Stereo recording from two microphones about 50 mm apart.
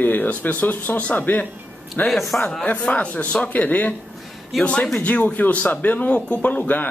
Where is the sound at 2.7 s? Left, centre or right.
Left.